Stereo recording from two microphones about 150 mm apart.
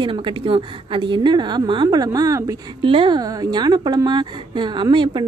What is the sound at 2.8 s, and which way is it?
Speech, 35° right (ahead or behind).